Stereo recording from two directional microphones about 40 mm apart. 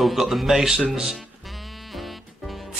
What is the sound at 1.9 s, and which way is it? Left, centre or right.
Music, centre.